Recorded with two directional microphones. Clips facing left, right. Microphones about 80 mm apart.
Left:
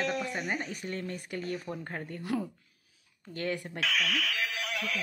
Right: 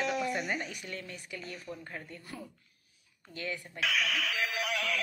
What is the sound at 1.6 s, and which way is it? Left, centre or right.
Speech, left.